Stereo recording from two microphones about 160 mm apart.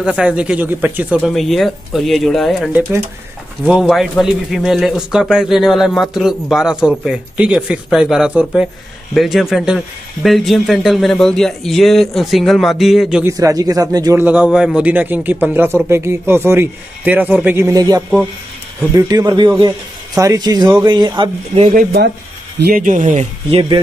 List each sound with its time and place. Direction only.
0.0 s a man's voice: 5° right (ahead or behind)
13.2 s speech: 20° right (ahead or behind)
14.2 s a man's voice: 10° right (ahead or behind); by 21.3 s 30° right (ahead or behind)
21.5 s speech: 55° right (ahead or behind)
23.5 s speech: 30° right (ahead or behind)